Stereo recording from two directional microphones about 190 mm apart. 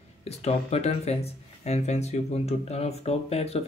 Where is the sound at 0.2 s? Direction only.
35° left (ahead or behind).